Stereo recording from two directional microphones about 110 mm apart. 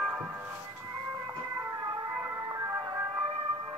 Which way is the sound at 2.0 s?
25° right (ahead or behind).